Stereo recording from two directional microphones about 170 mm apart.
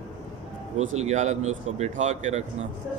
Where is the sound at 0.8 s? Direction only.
45° right (ahead or behind).